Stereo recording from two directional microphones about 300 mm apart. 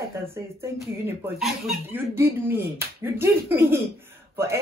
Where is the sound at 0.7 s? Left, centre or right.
Centre.